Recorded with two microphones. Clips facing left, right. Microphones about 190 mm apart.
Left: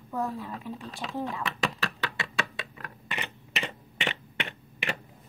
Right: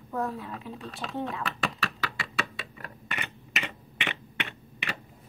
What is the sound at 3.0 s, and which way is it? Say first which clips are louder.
Typing: left 2 dB; 25° left (ahead or behind).